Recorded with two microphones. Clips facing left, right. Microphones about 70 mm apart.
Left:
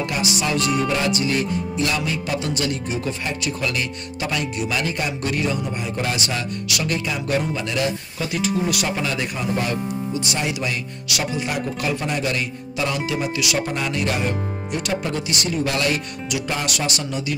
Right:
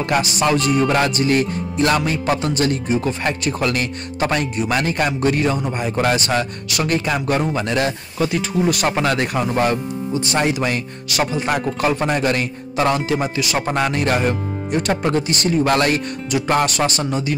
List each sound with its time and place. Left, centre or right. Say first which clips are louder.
0.1 s music: right 5 dB; right
13.7 s music: right 5 dB; right